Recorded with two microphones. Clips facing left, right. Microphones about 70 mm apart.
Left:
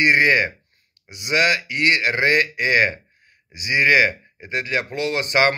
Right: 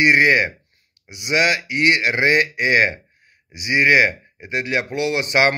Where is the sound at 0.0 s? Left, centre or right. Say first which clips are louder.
Right 2 dB; right.